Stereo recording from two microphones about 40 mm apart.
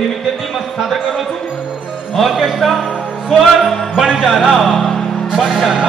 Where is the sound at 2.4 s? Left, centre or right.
Centre.